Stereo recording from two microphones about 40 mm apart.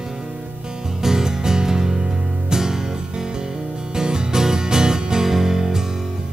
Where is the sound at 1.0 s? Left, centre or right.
Centre.